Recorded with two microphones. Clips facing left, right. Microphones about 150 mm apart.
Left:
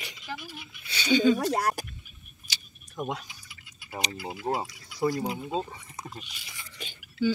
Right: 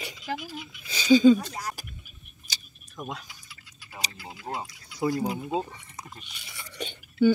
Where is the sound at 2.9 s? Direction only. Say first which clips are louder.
Left 4 dB; 25° left (ahead or behind).